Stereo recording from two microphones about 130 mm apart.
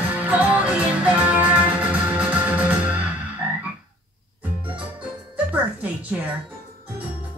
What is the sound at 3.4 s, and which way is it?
Croak, 15° right (ahead or behind).